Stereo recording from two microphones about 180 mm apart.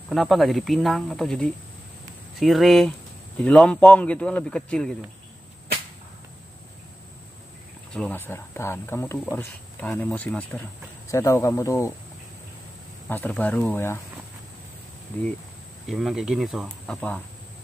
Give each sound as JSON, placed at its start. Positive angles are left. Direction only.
{"t": 0.1, "sound": "speech", "side_deg": 0}
{"t": 7.9, "sound": "speech", "side_deg": 10}
{"t": 13.1, "sound": "speech", "side_deg": 10}
{"t": 15.1, "sound": "speech", "side_deg": 10}